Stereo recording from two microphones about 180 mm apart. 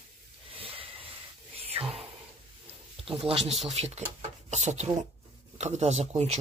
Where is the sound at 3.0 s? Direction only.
35° right (ahead or behind).